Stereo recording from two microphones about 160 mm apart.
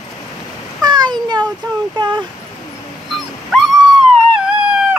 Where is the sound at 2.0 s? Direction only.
30° right (ahead or behind).